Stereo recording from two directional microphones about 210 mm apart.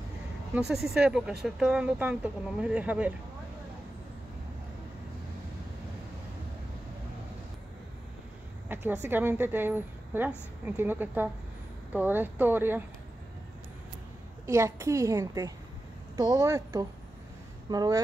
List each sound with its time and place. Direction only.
0.6 s speech: centre (ahead or behind)
8.8 s a woman's voice: 10° right (ahead or behind)
14.4 s a woman's voice: 15° right (ahead or behind)